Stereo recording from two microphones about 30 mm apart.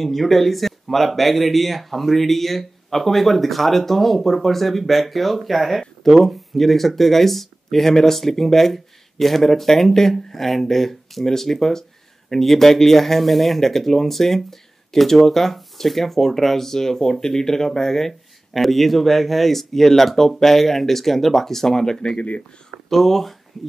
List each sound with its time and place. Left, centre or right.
0.0 s speech: centre
18.5 s speech: centre
22.0 s speech: left
22.8 s speech: centre